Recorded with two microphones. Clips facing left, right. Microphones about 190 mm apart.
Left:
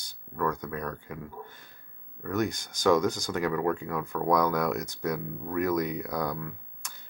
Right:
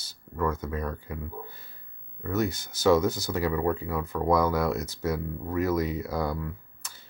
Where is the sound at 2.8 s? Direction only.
5° right (ahead or behind).